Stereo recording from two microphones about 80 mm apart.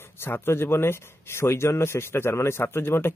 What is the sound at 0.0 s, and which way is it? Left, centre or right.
Speech, left.